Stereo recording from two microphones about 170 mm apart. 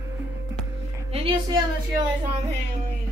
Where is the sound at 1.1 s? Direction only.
30° right (ahead or behind).